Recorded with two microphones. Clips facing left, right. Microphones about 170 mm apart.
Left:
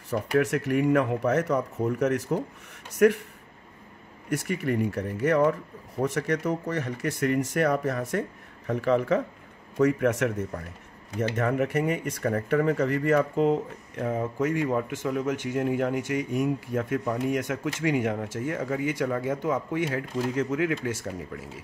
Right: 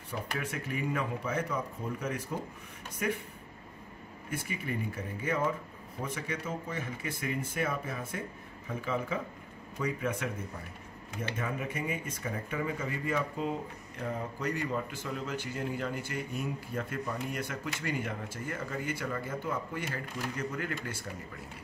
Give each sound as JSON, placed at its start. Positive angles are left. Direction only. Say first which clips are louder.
{"t": 0.1, "sound": "speech", "louder": "left 13 dB", "side_deg": 75}
{"t": 4.3, "sound": "speech", "louder": "left 9 dB", "side_deg": 75}
{"t": 16.9, "sound": "speech", "louder": "left 12 dB", "side_deg": 70}
{"t": 18.5, "sound": "speech", "louder": "left 7 dB", "side_deg": 60}
{"t": 19.9, "sound": "speech", "louder": "left 9 dB", "side_deg": 75}